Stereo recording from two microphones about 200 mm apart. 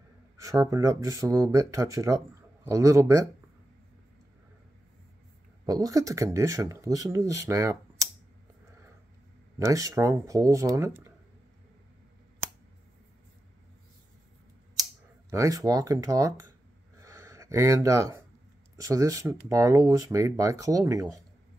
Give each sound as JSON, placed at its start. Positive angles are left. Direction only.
{"t": 0.4, "sound": "speech", "side_deg": -15}
{"t": 5.7, "sound": "speech", "side_deg": -15}
{"t": 9.6, "sound": "speech", "side_deg": -15}
{"t": 14.8, "sound": "speech", "side_deg": -15}
{"t": 17.0, "sound": "a sound", "side_deg": -15}
{"t": 18.8, "sound": "speech", "side_deg": -15}